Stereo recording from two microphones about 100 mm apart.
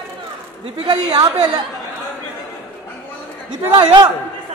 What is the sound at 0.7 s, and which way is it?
Speech, 45° right (ahead or behind).